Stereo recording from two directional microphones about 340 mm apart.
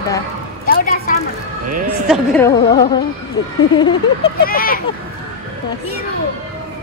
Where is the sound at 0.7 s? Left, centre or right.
Left.